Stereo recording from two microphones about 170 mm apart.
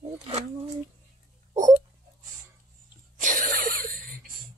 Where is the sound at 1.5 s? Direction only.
45° right (ahead or behind).